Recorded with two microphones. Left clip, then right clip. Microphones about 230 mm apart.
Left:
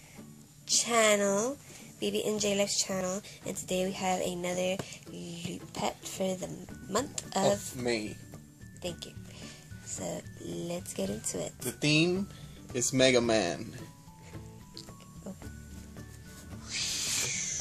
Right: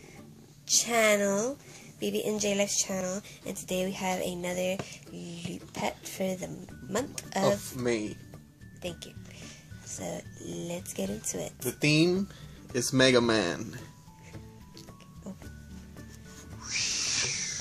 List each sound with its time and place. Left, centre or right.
0.7 s speech: centre
8.8 s music: centre
9.9 s speech: centre
11.6 s speech: centre
16.6 s music: right